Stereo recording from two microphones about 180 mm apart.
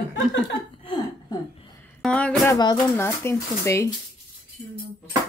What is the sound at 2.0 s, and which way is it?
Speech, 5° left (ahead or behind).